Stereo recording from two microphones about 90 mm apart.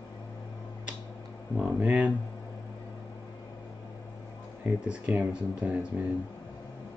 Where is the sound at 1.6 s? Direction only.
20° right (ahead or behind).